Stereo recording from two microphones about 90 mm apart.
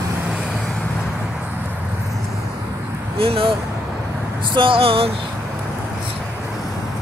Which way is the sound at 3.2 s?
90° right.